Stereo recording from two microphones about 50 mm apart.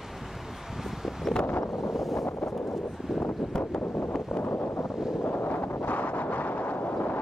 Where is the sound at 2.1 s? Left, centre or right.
Left.